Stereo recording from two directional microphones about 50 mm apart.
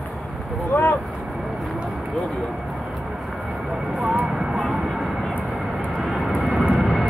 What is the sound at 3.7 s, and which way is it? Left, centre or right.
Vehicle, centre.